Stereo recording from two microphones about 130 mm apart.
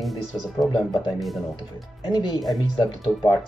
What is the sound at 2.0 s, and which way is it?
Speech, 35° left (ahead or behind).